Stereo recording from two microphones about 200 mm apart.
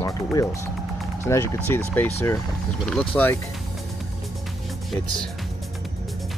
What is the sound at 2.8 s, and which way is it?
Speech, 5° left (ahead or behind).